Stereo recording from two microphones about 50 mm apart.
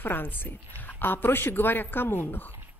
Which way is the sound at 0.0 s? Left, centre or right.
Left.